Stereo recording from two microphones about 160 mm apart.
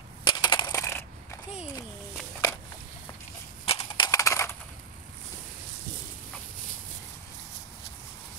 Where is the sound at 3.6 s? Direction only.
35° left (ahead or behind).